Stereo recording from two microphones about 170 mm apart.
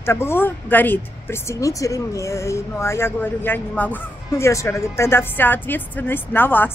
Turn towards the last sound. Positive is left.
turn(degrees=10)  # may be behind; listen again after turning